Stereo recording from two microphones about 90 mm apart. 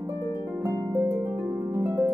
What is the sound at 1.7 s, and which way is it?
Harp, 25° right (ahead or behind).